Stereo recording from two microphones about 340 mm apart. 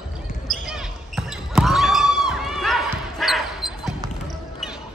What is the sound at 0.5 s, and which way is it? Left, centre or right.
Basketball bounce, centre.